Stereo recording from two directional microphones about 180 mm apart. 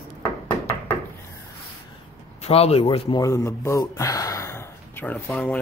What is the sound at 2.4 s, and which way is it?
Speech, 35° left (ahead or behind).